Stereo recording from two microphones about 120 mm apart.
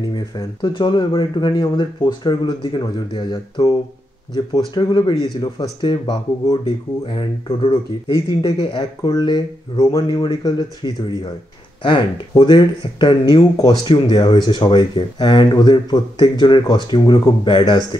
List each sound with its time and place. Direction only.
0.6 s speech: 40° left (ahead or behind)
4.7 s speech: 40° left (ahead or behind)